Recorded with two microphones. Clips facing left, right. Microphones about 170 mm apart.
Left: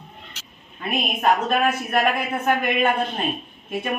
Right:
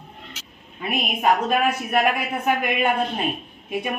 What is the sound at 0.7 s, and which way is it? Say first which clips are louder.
A woman's voice: even; 10° right (ahead or behind).